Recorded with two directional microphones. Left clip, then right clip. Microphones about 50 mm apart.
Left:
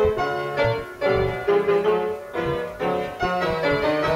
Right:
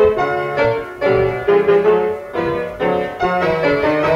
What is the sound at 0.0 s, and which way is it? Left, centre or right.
Music, left.